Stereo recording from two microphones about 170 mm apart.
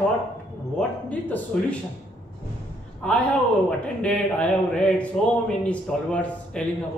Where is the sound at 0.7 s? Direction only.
10° left (ahead or behind).